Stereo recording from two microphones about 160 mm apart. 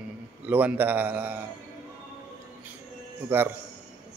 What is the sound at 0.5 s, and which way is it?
Speech, 10° right (ahead or behind).